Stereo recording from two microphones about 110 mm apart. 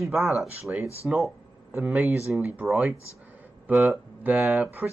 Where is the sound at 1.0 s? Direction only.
Centre (ahead or behind).